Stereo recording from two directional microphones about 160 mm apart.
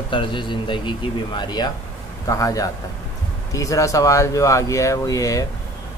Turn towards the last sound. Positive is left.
turn(degrees=20)  # may be behind; listen again after turning